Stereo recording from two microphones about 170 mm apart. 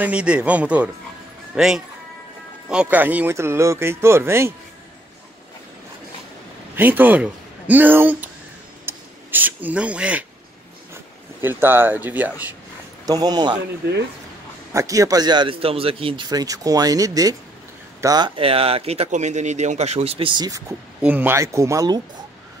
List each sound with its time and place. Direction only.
0.0 s speech: 5° right (ahead or behind)
6.7 s speech: 10° right (ahead or behind)
8.8 s a sound: 10° right (ahead or behind)
11.4 s speech: 10° right (ahead or behind)
13.0 s a man's voice: 25° right (ahead or behind)
13.8 s speech: 75° right (ahead or behind)
14.7 s a man's voice: 20° right (ahead or behind)
21.0 s speech: 10° right (ahead or behind)